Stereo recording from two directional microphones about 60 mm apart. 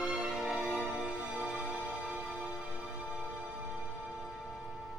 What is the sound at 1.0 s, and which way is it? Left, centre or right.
Music, right.